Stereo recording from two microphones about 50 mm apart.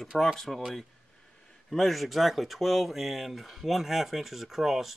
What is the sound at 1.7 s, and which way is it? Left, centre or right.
Speech, centre.